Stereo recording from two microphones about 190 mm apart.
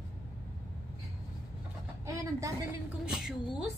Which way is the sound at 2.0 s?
15° right (ahead or behind).